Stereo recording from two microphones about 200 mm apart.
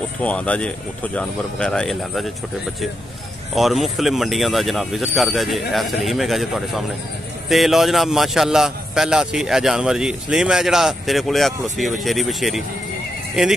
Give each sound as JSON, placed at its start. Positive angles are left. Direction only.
{"t": 0.2, "sound": "a man's voice", "side_deg": 5}
{"t": 3.5, "sound": "a man's voice", "side_deg": 0}